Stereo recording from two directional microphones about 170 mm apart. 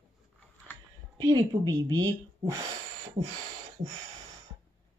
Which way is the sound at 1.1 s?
25° right (ahead or behind).